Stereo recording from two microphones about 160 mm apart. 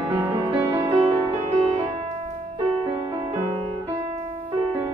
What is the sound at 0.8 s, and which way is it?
Music, 40° right (ahead or behind).